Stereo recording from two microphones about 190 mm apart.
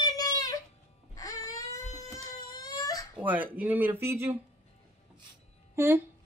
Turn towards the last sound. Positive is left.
turn(degrees=-15)  # may be behind; listen again after turning